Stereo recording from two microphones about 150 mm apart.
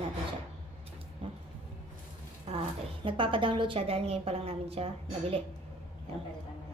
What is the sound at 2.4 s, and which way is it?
A woman's voice, 35° right (ahead or behind).